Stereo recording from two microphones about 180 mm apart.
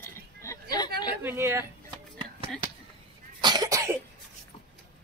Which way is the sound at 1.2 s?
15° right (ahead or behind).